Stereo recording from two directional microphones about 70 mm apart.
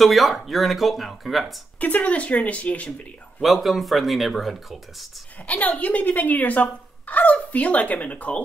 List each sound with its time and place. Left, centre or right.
0.0 s speech: centre
1.8 s speech: left
3.4 s speech: centre
5.5 s speech: left